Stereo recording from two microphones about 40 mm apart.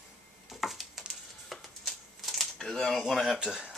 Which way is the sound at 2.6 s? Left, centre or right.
Centre.